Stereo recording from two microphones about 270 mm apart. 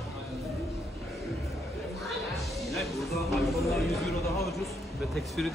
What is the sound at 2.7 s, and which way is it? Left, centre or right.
Music, centre.